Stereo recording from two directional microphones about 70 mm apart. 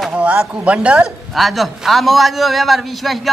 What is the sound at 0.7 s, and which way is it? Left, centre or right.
Speech, centre.